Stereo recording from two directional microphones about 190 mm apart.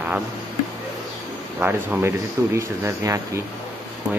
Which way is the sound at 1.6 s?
10° right (ahead or behind).